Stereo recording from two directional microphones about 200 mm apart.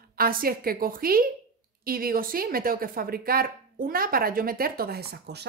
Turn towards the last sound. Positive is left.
turn(degrees=-55)  # may be behind; listen again after turning